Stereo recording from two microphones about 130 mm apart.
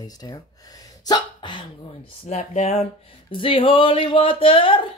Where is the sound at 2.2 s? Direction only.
60° left (ahead or behind).